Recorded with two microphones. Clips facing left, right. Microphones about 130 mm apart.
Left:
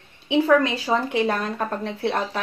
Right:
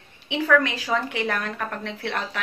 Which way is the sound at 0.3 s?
30° left (ahead or behind).